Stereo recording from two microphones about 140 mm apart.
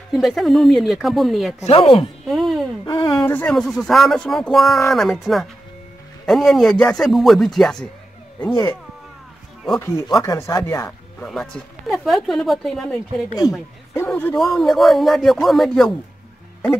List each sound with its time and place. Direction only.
0.1 s speech: centre (ahead or behind)
1.6 s speech: 45° left (ahead or behind)
2.2 s a sound: centre (ahead or behind)
2.9 s a sound: 35° left (ahead or behind)
3.3 s speech: 10° left (ahead or behind)
9.8 s speech: 20° left (ahead or behind); by 13.0 s centre (ahead or behind)
13.9 s speech: 15° left (ahead or behind)
14.3 s speech: centre (ahead or behind)